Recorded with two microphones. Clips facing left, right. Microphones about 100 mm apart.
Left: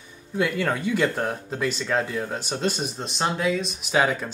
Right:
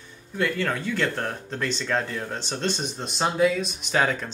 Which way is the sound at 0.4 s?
15° left (ahead or behind).